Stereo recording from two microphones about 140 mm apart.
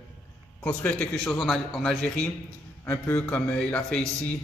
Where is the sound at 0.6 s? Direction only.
10° left (ahead or behind).